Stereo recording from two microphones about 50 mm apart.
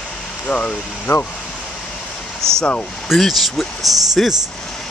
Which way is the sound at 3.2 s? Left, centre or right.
Centre.